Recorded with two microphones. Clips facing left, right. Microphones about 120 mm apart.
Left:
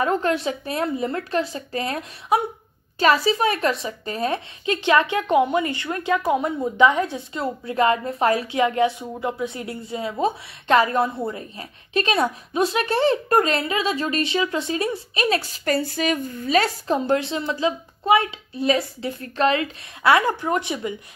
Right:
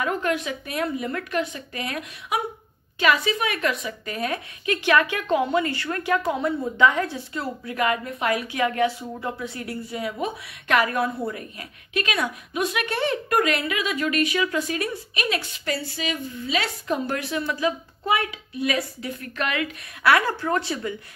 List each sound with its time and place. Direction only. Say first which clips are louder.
0.0 s a woman's voice: left 4 dB; 30° left (ahead or behind)